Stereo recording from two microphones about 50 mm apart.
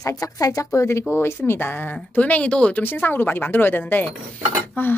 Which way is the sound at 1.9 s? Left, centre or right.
Left.